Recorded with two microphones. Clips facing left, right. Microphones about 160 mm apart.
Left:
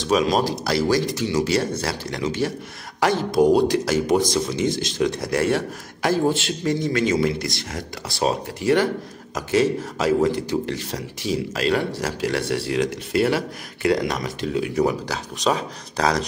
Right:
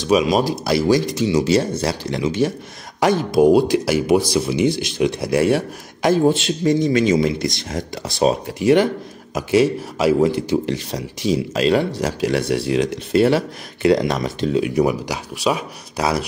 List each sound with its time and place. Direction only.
0.1 s speech: 10° right (ahead or behind)